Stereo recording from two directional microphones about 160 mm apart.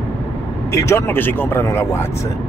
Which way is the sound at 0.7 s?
15° left (ahead or behind).